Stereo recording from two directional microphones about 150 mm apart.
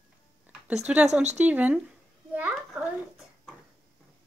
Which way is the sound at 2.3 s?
10° right (ahead or behind).